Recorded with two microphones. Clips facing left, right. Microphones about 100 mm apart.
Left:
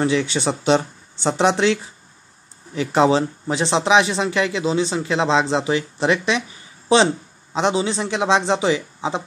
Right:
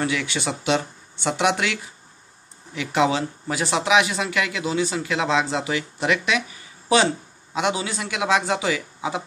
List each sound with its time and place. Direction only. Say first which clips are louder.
0.0 s speech: left 5 dB; 30° left (ahead or behind)